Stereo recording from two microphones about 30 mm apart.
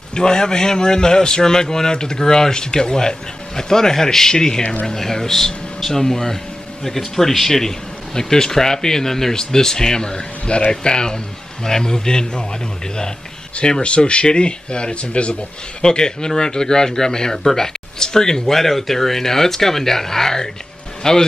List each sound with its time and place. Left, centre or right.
0.1 s a man's voice: left
7.4 s a man's voice: centre
13.6 s a man's voice: left
15.8 s a man's voice: left
18.6 s a man's voice: centre